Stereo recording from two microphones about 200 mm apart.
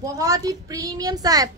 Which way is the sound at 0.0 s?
15° right (ahead or behind).